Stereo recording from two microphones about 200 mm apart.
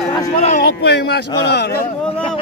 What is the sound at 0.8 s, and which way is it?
Speech, 55° left (ahead or behind).